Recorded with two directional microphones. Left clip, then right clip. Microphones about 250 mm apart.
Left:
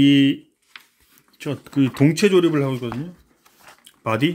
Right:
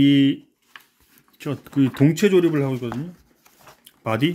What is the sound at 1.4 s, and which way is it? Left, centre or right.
Speech, centre.